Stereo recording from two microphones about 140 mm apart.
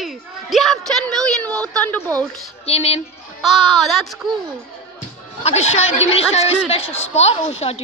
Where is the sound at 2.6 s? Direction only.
45° left (ahead or behind).